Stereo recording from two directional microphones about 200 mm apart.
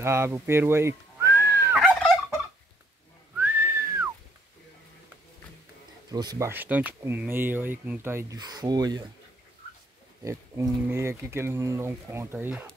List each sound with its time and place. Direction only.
0.0 s whistling: 10° right (ahead or behind)
1.8 s fowl: centre (ahead or behind)
3.3 s whistling: 10° right (ahead or behind)
6.0 s speech: 20° right (ahead or behind)
10.2 s speech: 15° right (ahead or behind)